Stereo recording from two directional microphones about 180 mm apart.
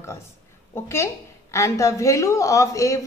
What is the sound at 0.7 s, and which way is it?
A woman's voice, 15° left (ahead or behind).